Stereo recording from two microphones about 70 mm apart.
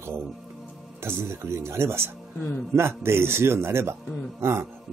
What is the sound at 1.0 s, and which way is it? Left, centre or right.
Speech, right.